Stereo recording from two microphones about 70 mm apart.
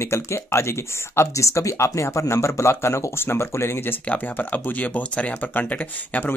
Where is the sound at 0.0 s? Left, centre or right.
Left.